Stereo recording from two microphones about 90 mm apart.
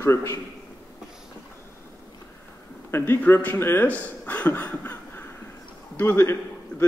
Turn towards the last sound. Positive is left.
turn(degrees=25)  # may be behind; listen again after turning